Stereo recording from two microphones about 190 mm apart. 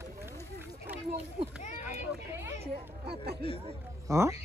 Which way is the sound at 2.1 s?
10° right (ahead or behind).